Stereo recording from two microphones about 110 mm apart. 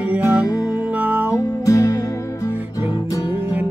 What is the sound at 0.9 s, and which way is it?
Music, 15° right (ahead or behind).